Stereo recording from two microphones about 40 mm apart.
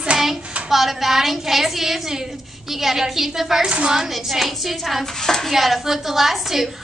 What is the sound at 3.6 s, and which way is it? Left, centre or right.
Speech, right.